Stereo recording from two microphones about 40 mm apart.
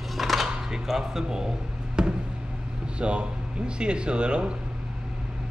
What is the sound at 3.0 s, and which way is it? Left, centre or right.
Speech, right.